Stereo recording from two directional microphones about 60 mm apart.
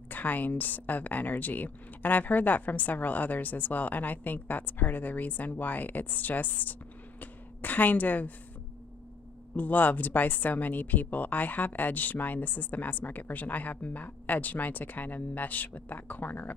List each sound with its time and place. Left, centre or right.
0.1 s a woman's voice: left
9.6 s a woman's voice: left